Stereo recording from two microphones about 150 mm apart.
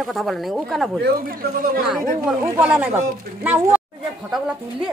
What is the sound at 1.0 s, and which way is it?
Speech, 75° right (ahead or behind).